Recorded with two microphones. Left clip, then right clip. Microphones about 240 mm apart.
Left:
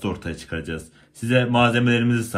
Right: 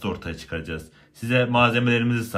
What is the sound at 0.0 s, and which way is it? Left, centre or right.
Speech, right.